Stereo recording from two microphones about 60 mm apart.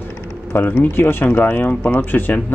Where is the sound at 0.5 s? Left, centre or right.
Left.